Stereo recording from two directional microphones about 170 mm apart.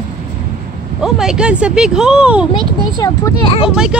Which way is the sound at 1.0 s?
5° right (ahead or behind).